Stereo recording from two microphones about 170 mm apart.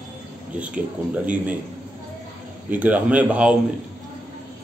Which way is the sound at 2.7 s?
10° right (ahead or behind).